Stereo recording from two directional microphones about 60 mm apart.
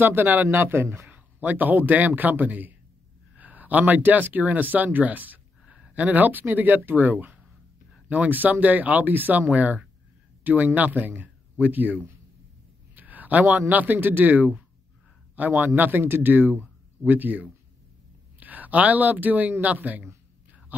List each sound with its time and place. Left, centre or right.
0.0 s speech: right
1.1 s a man's voice: right